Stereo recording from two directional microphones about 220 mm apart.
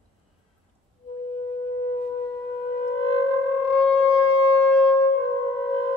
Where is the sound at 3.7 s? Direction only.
5° left (ahead or behind).